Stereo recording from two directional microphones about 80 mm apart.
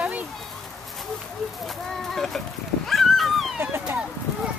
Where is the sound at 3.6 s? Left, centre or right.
Right.